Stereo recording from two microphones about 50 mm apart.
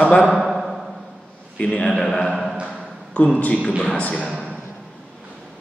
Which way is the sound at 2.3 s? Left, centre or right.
Centre.